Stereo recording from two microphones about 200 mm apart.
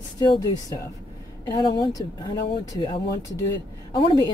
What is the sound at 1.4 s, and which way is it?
Speech, 20° left (ahead or behind).